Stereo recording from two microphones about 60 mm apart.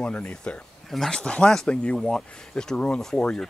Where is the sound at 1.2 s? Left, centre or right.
Centre.